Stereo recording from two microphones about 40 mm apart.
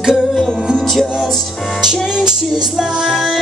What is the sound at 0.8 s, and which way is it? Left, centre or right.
Music, centre.